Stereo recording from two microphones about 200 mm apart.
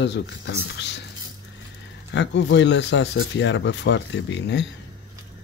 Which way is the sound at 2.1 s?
65° left (ahead or behind).